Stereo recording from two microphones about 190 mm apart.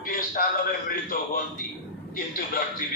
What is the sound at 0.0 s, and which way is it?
A man's voice, 50° left (ahead or behind).